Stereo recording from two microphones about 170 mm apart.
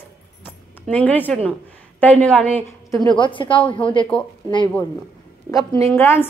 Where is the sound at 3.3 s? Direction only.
30° left (ahead or behind).